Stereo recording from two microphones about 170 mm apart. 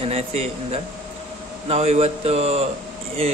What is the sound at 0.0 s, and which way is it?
A man's voice, 35° right (ahead or behind).